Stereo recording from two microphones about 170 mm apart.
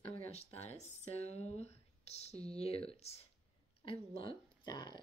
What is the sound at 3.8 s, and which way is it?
Speech, 30° left (ahead or behind).